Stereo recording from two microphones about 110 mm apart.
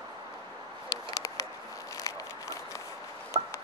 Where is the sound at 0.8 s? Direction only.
30° left (ahead or behind).